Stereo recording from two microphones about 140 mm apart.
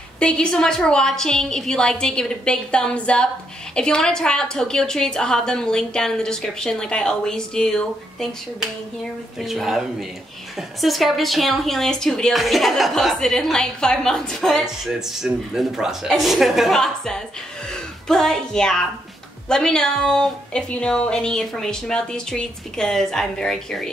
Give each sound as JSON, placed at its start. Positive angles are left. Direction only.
{"t": 0.2, "sound": "a woman's voice", "side_deg": 5}